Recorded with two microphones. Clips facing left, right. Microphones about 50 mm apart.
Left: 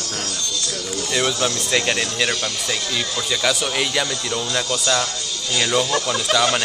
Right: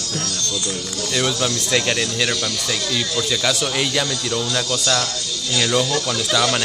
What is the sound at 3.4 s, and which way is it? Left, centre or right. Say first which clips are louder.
Speech: even; centre.